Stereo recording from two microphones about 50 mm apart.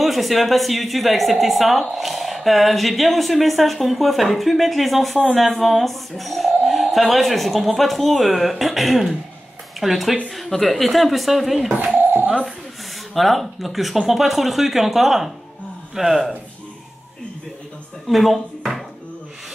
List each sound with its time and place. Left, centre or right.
0.0 s a woman's voice: centre
11.7 s speech: right
13.1 s a woman's voice: centre
18.0 s speech: centre